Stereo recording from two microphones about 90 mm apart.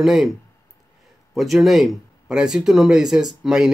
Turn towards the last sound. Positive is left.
turn(degrees=-5)  # may be behind; listen again after turning